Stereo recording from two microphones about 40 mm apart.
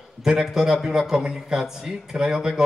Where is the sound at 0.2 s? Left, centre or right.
Centre.